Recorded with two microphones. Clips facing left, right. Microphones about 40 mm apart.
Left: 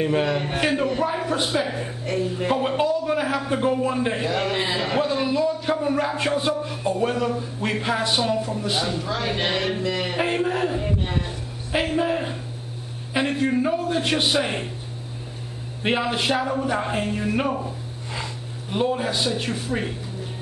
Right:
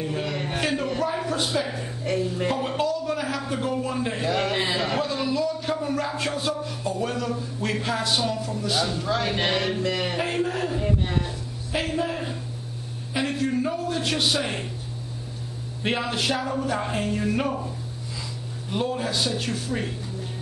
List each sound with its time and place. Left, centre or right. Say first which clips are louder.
0.0 s a man's voice: left 7 dB; left
0.4 s a man's voice: left 4 dB; centre
4.3 s a man's voice: left 1 dB; centre
5.0 s speech: left 3 dB; left
9.1 s a man's voice: right 1 dB; centre
10.1 s a man's voice: left 3 dB; centre
10.8 s a sound: even; centre
11.2 s a sound: left 1 dB; left
13.1 s a man's voice: left 3 dB; left
15.8 s a man's voice: left 3 dB; centre